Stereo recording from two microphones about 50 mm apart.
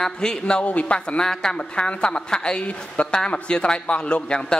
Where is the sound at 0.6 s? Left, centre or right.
Left.